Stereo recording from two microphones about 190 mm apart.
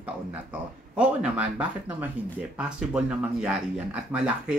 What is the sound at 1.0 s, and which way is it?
Speech, 5° right (ahead or behind).